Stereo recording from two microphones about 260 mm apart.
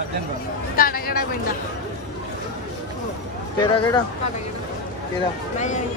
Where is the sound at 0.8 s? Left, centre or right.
Left.